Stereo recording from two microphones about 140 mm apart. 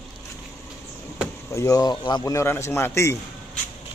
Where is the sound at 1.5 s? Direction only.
20° left (ahead or behind).